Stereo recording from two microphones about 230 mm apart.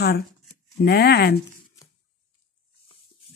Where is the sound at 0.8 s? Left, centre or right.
Left.